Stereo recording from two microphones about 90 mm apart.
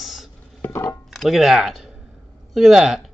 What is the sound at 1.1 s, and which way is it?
Speech, centre (ahead or behind).